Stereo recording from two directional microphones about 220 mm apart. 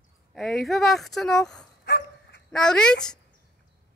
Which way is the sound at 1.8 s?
50° left (ahead or behind).